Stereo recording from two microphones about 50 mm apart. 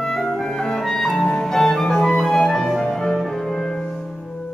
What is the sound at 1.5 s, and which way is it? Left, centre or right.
Music, centre.